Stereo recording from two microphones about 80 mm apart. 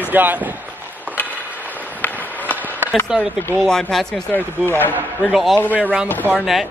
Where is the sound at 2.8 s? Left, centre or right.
Right.